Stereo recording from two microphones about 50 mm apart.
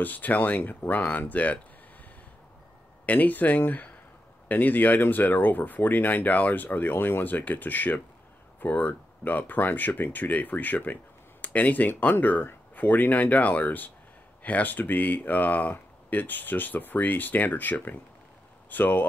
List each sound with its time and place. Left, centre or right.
0.0 s speech: left
3.1 s speech: left